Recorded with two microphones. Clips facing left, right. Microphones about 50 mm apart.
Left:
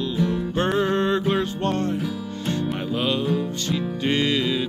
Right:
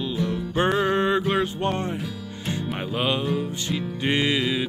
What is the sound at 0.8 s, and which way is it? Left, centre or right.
Music, centre.